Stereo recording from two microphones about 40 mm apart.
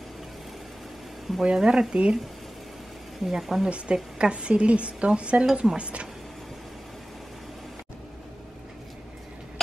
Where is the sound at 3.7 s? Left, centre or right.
Right.